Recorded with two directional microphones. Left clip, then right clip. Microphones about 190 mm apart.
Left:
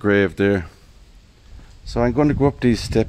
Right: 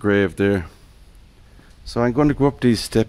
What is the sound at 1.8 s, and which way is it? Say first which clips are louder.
Speech: even; centre (ahead or behind).